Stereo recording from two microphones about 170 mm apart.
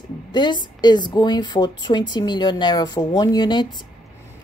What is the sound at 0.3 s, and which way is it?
Speech, 25° left (ahead or behind).